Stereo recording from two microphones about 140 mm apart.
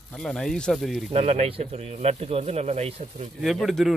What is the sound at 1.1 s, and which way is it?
Speech, 45° right (ahead or behind).